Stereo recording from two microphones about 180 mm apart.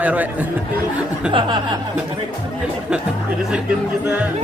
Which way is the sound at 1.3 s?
25° right (ahead or behind).